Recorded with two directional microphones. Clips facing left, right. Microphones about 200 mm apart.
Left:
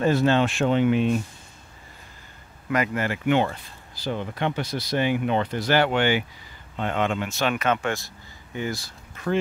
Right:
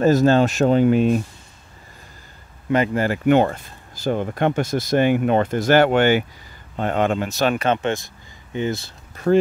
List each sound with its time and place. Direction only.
0.0 s speech: 40° right (ahead or behind)
2.7 s speech: 30° right (ahead or behind)
9.1 s a sound: 40° right (ahead or behind)